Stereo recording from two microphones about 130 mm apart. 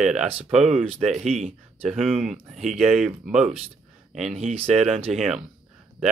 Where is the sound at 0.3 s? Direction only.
50° right (ahead or behind).